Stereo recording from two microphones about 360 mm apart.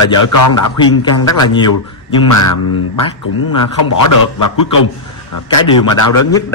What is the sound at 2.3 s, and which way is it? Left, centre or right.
Speech, left.